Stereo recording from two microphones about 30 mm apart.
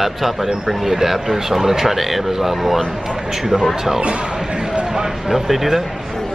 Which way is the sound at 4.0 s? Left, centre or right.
Right.